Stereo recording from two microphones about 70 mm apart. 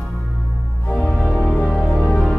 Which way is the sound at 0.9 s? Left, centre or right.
Centre.